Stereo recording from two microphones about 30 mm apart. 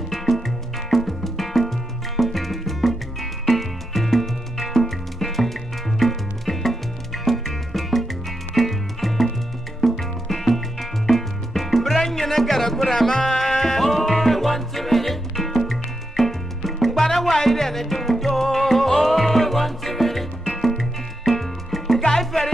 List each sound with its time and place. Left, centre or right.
0.1 s music: centre
13.8 s music: centre